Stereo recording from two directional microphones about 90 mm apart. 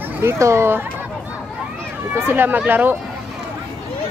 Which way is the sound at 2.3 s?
25° right (ahead or behind).